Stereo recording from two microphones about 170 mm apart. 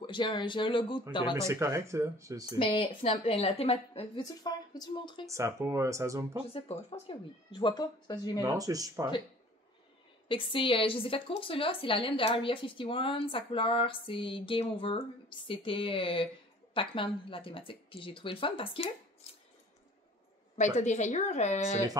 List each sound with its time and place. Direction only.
0.0 s speech: 25° left (ahead or behind)
1.5 s speech: 15° right (ahead or behind)
2.6 s a woman's voice: 30° left (ahead or behind)
4.2 s speech: 25° left (ahead or behind)
5.2 s speech: 20° right (ahead or behind)
6.5 s speech: 35° left (ahead or behind)
8.4 s speech: 20° right (ahead or behind)
10.2 s a woman's voice: 30° left (ahead or behind)
19.2 s a sound: 35° left (ahead or behind)
20.5 s speech: 45° left (ahead or behind)